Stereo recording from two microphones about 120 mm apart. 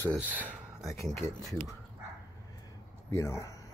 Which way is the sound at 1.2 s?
25° left (ahead or behind).